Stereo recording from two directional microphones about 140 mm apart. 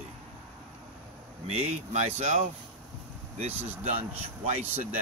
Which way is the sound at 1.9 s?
55° right (ahead or behind).